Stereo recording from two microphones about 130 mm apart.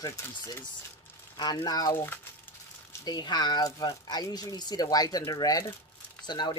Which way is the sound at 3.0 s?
35° left (ahead or behind).